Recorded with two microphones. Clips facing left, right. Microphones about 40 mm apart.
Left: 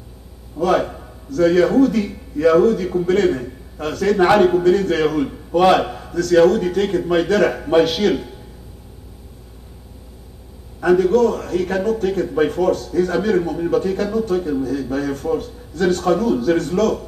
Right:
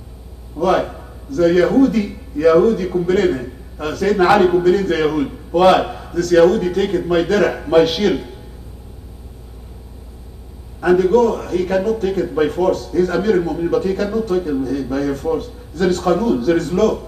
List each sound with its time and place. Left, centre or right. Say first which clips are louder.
0.7 s a man's voice: right 1 dB; centre
10.8 s a man's voice: right 1 dB; centre
15.8 s a man's voice: right 1 dB; centre
16.5 s a man's voice: right 2 dB; centre